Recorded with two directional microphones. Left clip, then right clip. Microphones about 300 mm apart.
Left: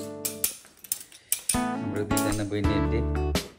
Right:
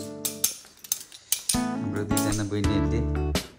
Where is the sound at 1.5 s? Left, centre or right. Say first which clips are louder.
Left 1 dB; centre.